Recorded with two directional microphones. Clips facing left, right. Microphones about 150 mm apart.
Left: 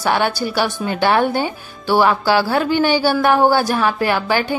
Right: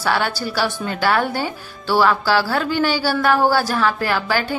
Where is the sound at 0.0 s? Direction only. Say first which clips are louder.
Left 3 dB; 20° left (ahead or behind).